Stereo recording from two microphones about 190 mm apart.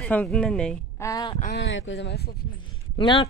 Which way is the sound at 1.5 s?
80° left.